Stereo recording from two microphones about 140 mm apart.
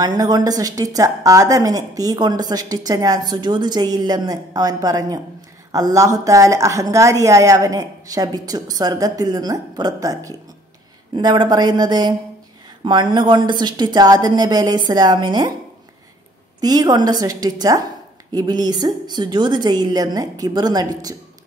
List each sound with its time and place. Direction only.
0.0 s a woman's voice: 30° right (ahead or behind)
16.6 s a woman's voice: 30° right (ahead or behind)